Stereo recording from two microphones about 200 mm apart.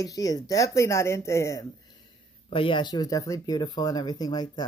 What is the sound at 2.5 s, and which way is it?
Speech, 25° left (ahead or behind).